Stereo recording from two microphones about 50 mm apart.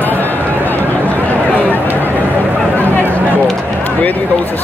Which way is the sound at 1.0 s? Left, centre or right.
Left.